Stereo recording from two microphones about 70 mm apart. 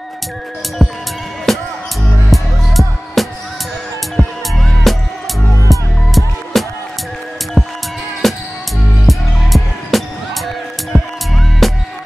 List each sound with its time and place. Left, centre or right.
0.8 s music: centre
3.2 s music: centre